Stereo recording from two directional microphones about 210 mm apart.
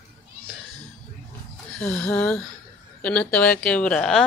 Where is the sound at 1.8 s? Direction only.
5° left (ahead or behind).